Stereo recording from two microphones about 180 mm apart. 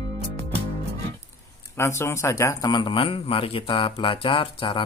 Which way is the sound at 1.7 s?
15° left (ahead or behind).